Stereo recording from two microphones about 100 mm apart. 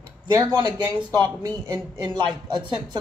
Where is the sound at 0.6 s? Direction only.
55° right (ahead or behind).